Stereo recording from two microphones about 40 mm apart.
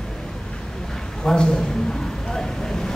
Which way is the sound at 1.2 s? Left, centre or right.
Centre.